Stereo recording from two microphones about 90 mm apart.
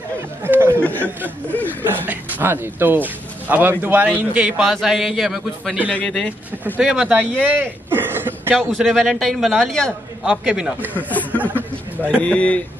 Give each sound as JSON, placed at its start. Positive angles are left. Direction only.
{"t": 0.4, "sound": "chatter", "side_deg": -25}
{"t": 0.7, "sound": "chuckle", "side_deg": 20}
{"t": 1.8, "sound": "speech", "side_deg": -20}
{"t": 4.6, "sound": "a man's voice", "side_deg": 0}
{"t": 5.9, "sound": "speech", "side_deg": 10}
{"t": 6.8, "sound": "speech", "side_deg": -10}
{"t": 7.9, "sound": "a sound", "side_deg": -25}
{"t": 8.5, "sound": "a man's voice", "side_deg": 0}
{"t": 10.2, "sound": "a man's voice", "side_deg": -5}
{"t": 10.8, "sound": "speech", "side_deg": -20}
{"t": 11.1, "sound": "speech", "side_deg": 20}
{"t": 11.5, "sound": "a sound", "side_deg": -20}
{"t": 12.2, "sound": "speech", "side_deg": 15}